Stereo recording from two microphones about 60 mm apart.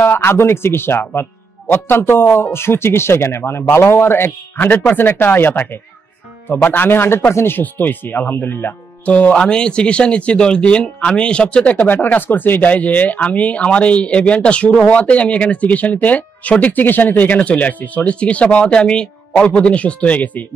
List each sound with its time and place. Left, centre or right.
0.0 s a man's voice: left
9.0 s speech: left